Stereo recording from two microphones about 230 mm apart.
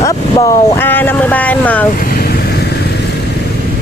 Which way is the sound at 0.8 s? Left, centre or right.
Centre.